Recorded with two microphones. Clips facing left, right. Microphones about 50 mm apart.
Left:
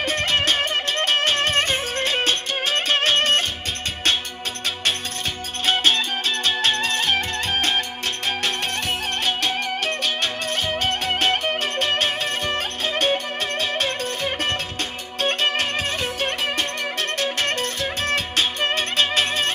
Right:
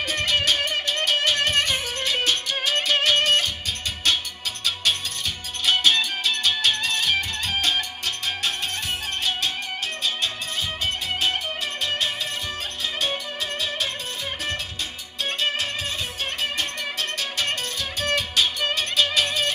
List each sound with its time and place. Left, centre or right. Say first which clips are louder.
0.0 s music: left 2 dB; left
5.7 s music: left 1 dB; left
10.8 s music: left 3 dB; left
17.2 s music: left 6 dB; left